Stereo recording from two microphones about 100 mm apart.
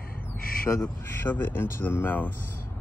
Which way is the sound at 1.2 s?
20° left (ahead or behind).